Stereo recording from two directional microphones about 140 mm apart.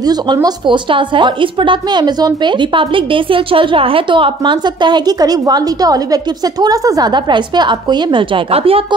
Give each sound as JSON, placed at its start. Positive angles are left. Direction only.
{"t": 0.0, "sound": "a woman's voice", "side_deg": -30}